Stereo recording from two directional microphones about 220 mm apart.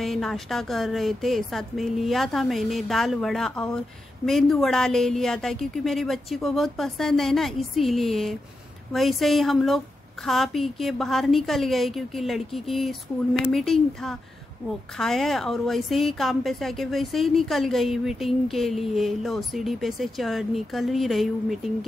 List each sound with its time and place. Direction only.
0.0 s speech: centre (ahead or behind)